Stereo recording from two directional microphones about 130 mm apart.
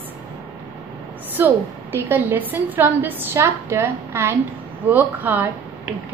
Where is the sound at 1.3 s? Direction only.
15° right (ahead or behind).